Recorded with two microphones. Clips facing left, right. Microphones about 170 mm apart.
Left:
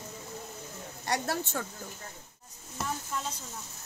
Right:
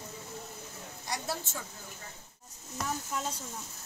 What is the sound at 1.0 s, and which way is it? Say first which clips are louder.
Speech: left 6 dB; 65° left (ahead or behind).